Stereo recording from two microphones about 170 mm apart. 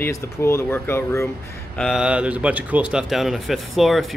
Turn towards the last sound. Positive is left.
turn(degrees=0)  # may be behind; listen again after turning